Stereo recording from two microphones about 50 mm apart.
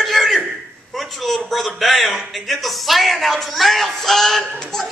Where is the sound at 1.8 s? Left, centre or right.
Centre.